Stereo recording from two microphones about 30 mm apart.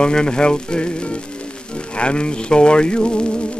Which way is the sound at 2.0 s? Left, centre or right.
Left.